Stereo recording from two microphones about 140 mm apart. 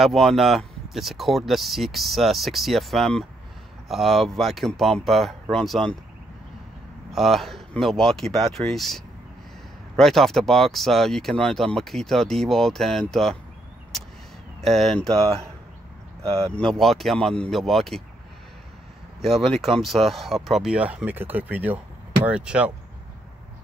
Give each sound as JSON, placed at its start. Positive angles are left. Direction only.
{"t": 0.0, "sound": "speech", "side_deg": 0}
{"t": 7.2, "sound": "speech", "side_deg": 0}
{"t": 14.6, "sound": "speech", "side_deg": 0}
{"t": 16.2, "sound": "speech", "side_deg": -45}
{"t": 16.5, "sound": "speech", "side_deg": 5}
{"t": 19.2, "sound": "speech", "side_deg": 0}